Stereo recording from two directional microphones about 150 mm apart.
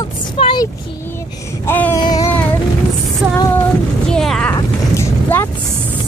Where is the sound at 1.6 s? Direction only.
15° left (ahead or behind).